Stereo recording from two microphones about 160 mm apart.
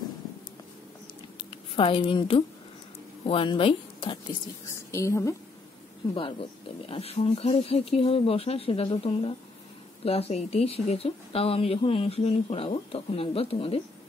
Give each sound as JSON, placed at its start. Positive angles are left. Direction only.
{"t": 1.5, "sound": "a woman's voice", "side_deg": 35}
{"t": 4.9, "sound": "a woman's voice", "side_deg": 20}
{"t": 6.9, "sound": "speech", "side_deg": 40}